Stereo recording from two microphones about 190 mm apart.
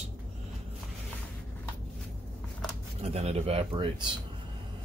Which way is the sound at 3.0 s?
30° right (ahead or behind).